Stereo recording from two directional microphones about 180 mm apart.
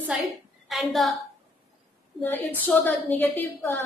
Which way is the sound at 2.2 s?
10° left (ahead or behind).